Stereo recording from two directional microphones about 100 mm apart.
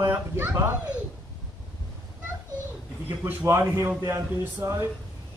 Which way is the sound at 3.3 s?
25° right (ahead or behind).